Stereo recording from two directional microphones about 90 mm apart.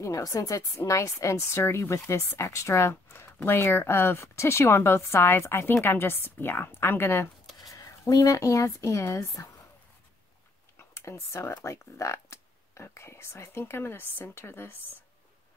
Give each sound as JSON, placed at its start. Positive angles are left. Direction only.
{"t": 0.0, "sound": "speech", "side_deg": 35}
{"t": 7.5, "sound": "speech", "side_deg": 40}
{"t": 10.8, "sound": "a sound", "side_deg": 30}
{"t": 11.6, "sound": "speech", "side_deg": 30}